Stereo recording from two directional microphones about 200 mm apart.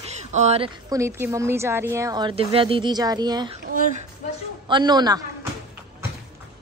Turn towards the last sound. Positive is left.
turn(degrees=-20)  # may be behind; listen again after turning